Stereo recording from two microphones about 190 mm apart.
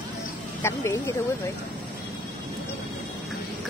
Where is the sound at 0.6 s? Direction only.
15° left (ahead or behind).